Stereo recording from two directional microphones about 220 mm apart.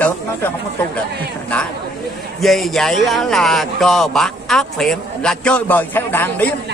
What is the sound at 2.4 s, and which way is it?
Speech, centre (ahead or behind).